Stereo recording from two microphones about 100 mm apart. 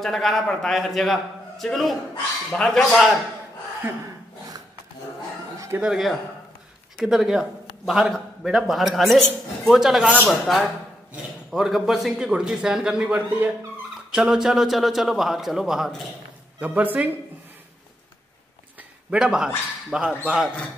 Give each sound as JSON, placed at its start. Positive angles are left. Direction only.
{"t": 0.0, "sound": "a man's voice", "side_deg": 0}
{"t": 5.8, "sound": "a man's voice", "side_deg": -5}
{"t": 16.5, "sound": "a man's voice", "side_deg": -15}
{"t": 19.0, "sound": "a man's voice", "side_deg": -5}